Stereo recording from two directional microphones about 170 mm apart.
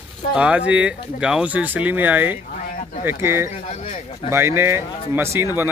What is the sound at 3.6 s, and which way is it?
Speech, 40° left (ahead or behind).